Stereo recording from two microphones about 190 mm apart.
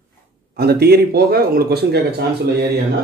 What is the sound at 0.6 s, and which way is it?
A man's voice, 55° right (ahead or behind).